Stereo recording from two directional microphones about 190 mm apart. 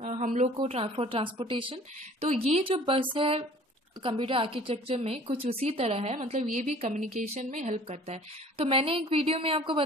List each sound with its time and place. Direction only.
0.0 s a woman's voice: 40° right (ahead or behind)